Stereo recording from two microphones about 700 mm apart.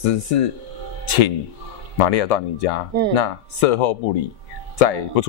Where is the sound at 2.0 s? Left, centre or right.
Left.